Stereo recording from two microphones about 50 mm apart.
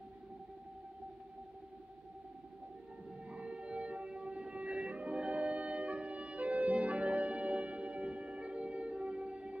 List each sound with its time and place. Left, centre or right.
3.3 s music: right